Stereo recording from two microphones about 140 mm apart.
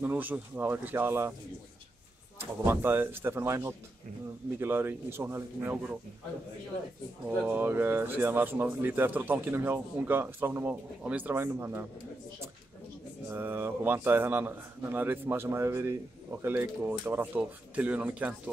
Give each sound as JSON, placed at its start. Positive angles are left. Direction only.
{"t": 0.0, "sound": "speech", "side_deg": -15}
{"t": 2.3, "sound": "speech", "side_deg": -15}
{"t": 7.2, "sound": "speech", "side_deg": -10}
{"t": 13.3, "sound": "speech", "side_deg": -15}